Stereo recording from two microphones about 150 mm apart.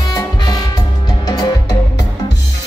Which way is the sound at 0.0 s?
25° left (ahead or behind).